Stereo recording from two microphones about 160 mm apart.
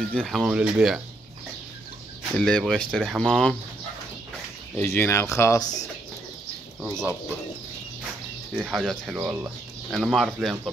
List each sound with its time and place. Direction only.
0.1 s speech: 5° left (ahead or behind)
2.3 s speech: 5° left (ahead or behind)
4.7 s speech: 15° left (ahead or behind)
6.8 s speech: 5° left (ahead or behind)
8.5 s speech: centre (ahead or behind)
9.2 s speech: 10° right (ahead or behind)
9.8 s speech: centre (ahead or behind)